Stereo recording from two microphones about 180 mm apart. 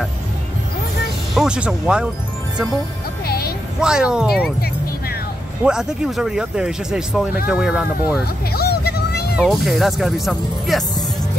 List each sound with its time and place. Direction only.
1.3 s speech: 5° right (ahead or behind)
3.3 s music: 60° left (ahead or behind)
3.8 s speech: 5° right (ahead or behind)
5.6 s speech: 5° right (ahead or behind)
8.5 s music: 60° left (ahead or behind)
9.4 s speech: centre (ahead or behind)